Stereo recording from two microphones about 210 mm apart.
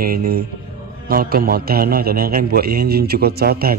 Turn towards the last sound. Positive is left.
turn(degrees=-45)  # may be behind; listen again after turning